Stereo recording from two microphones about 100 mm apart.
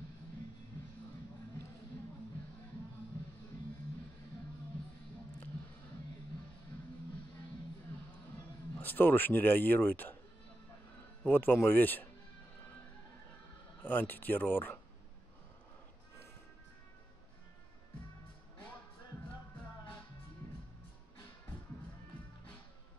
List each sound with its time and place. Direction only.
8.7 s speech: 20° left (ahead or behind)
11.2 s speech: 20° left (ahead or behind)
13.8 s speech: 20° left (ahead or behind)